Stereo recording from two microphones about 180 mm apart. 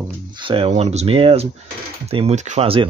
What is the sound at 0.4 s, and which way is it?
Speech, 30° right (ahead or behind).